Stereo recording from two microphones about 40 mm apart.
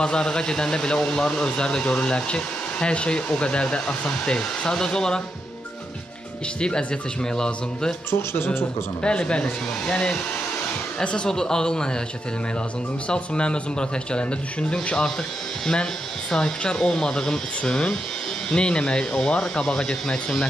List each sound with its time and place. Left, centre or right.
0.0 s speech: centre
6.6 s speech: left
9.0 s speech: left
11.2 s speech: centre
13.1 s speech: left
15.6 s speech: centre